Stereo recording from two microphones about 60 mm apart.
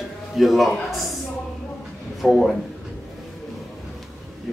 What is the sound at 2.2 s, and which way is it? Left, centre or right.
Speech, centre.